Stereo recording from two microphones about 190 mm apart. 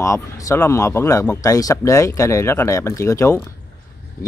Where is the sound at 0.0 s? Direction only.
15° left (ahead or behind).